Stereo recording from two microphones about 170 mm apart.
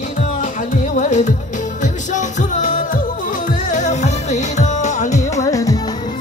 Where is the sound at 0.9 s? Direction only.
45° left (ahead or behind).